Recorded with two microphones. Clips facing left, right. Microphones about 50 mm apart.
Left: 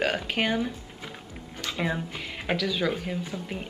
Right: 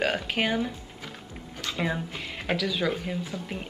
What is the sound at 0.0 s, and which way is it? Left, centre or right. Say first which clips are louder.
Speech: even; centre.